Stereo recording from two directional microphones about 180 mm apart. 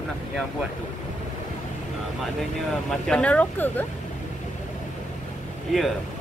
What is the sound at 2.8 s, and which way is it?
Speech, 5° left (ahead or behind).